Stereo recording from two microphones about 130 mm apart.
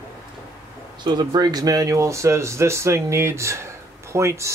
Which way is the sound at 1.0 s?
35° right (ahead or behind).